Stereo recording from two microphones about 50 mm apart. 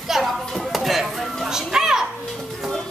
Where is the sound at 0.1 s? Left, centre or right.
Centre.